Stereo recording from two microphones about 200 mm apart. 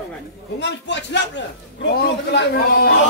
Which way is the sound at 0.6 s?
60° left (ahead or behind).